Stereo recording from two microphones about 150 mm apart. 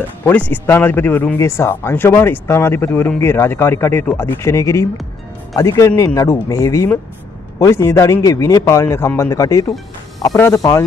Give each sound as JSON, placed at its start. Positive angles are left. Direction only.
{"t": 0.2, "sound": "a man's voice", "side_deg": 10}